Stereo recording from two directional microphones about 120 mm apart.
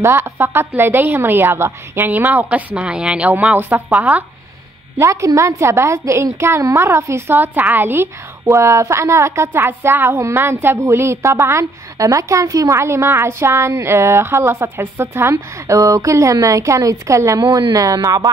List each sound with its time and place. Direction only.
0.0 s a woman's voice: 20° right (ahead or behind)
4.9 s a woman's voice: 25° right (ahead or behind)